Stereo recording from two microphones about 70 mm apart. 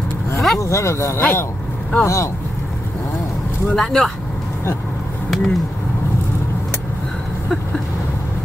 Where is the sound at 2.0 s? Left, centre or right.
Left.